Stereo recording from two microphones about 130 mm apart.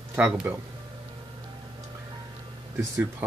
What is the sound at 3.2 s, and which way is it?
Speech, 15° right (ahead or behind).